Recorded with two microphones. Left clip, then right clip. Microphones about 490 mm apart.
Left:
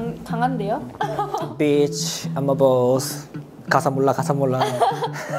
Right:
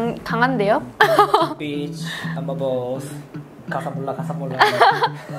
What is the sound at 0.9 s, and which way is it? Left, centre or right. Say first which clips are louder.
Speech: right 10 dB; right.